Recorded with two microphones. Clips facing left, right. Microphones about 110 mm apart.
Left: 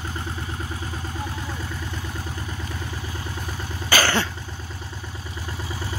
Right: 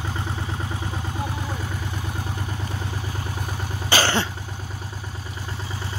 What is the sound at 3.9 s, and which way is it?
Cough, 25° right (ahead or behind).